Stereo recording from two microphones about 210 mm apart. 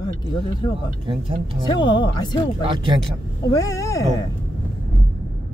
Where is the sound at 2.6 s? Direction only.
25° right (ahead or behind).